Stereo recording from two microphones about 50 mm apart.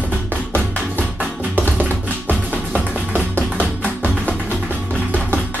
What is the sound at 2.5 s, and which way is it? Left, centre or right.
Music, right.